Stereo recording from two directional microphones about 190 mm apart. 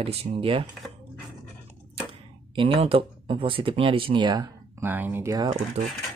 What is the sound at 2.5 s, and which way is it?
Speech, 25° right (ahead or behind).